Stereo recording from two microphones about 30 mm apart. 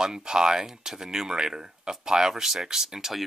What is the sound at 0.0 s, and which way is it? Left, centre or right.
Speech, right.